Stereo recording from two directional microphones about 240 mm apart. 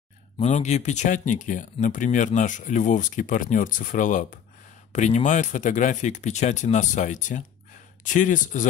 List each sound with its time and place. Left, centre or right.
0.4 s speech: left